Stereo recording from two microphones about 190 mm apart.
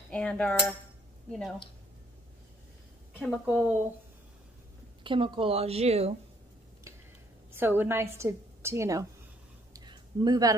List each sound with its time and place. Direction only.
0.1 s cutlery: 5° left (ahead or behind)
3.3 s a woman's voice: 5° right (ahead or behind)
5.0 s a woman's voice: 25° right (ahead or behind)
7.5 s a woman's voice: 10° right (ahead or behind)
9.8 s a sound: 20° right (ahead or behind)